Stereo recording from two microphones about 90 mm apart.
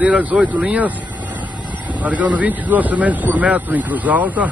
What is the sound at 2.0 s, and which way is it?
Speech, 15° right (ahead or behind).